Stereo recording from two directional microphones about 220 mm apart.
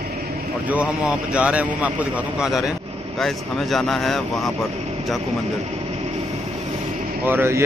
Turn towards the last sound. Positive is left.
turn(degrees=-10)  # may be behind; listen again after turning